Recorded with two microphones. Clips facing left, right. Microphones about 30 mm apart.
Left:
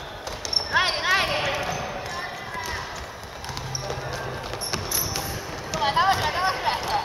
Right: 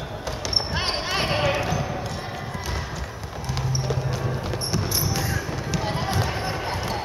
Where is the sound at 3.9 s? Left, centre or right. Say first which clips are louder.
Right 3 dB; centre.